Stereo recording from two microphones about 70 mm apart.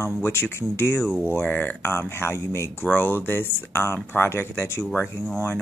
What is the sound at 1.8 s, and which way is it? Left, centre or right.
Speech, left.